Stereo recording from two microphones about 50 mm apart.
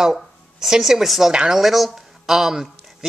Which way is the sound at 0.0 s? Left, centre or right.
Centre.